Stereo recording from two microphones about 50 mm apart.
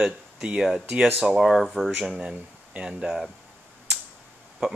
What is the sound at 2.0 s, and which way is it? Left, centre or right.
Speech, centre.